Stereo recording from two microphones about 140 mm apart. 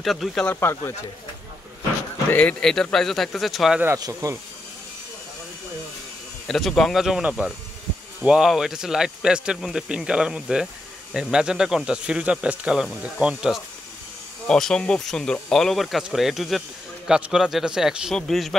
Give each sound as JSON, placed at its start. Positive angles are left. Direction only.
{"t": 0.0, "sound": "speech", "side_deg": 0}
{"t": 0.5, "sound": "speech", "side_deg": 15}
{"t": 2.3, "sound": "speech", "side_deg": 5}
{"t": 3.8, "sound": "speech", "side_deg": -20}
{"t": 6.4, "sound": "speech", "side_deg": 0}